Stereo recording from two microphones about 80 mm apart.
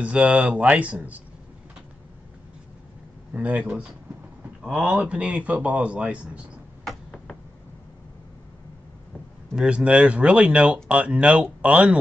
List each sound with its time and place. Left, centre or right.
0.0 s speech: centre
3.3 s speech: centre
6.8 s a sound: centre
9.6 s speech: centre